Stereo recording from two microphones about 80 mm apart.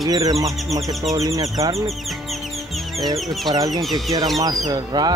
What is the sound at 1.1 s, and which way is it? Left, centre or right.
Speech, right.